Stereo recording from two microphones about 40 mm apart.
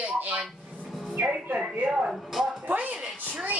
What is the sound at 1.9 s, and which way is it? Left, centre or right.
Speech, right.